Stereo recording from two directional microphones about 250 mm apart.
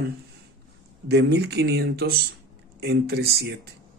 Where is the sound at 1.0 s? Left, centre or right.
Right.